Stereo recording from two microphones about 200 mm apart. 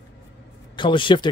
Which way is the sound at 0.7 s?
25° left (ahead or behind).